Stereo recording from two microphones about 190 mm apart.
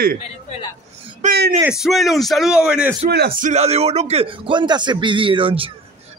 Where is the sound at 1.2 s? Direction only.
40° right (ahead or behind).